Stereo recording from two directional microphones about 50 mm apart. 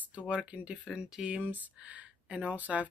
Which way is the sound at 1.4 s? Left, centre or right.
Right.